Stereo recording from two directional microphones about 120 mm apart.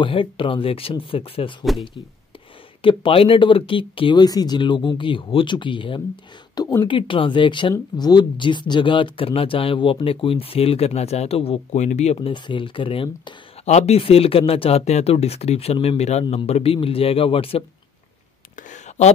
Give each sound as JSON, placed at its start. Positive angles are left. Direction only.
{"t": 0.0, "sound": "speech", "side_deg": 45}
{"t": 1.6, "sound": "speech", "side_deg": 0}
{"t": 2.8, "sound": "speech", "side_deg": 45}
{"t": 6.9, "sound": "speech", "side_deg": 45}
{"t": 11.8, "sound": "speech", "side_deg": 75}
{"t": 12.3, "sound": "speech", "side_deg": 40}
{"t": 13.7, "sound": "speech", "side_deg": 65}
{"t": 18.6, "sound": "a sound", "side_deg": 80}